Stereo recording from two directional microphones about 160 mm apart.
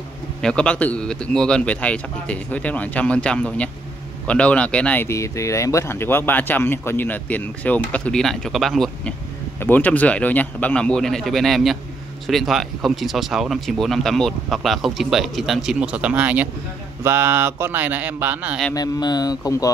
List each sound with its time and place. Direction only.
0.4 s speech: 5° left (ahead or behind); by 18.6 s 10° right (ahead or behind)
18.7 s speech: 25° left (ahead or behind)